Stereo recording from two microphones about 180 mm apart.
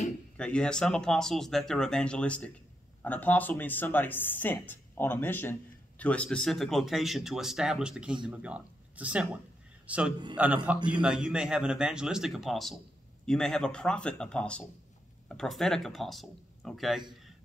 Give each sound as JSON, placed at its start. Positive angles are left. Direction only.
{"t": 0.4, "sound": "a man's voice", "side_deg": 5}